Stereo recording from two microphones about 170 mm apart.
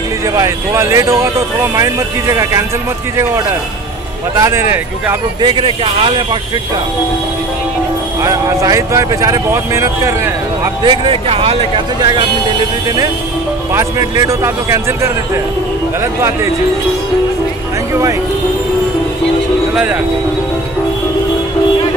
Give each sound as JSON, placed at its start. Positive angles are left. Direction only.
{"t": 0.4, "sound": "speech", "side_deg": -15}
{"t": 4.4, "sound": "speech", "side_deg": -15}
{"t": 5.4, "sound": "speech", "side_deg": -30}
{"t": 8.2, "sound": "speech", "side_deg": -20}
{"t": 10.8, "sound": "speech", "side_deg": -30}
{"t": 13.7, "sound": "speech", "side_deg": -20}
{"t": 19.7, "sound": "speech", "side_deg": -5}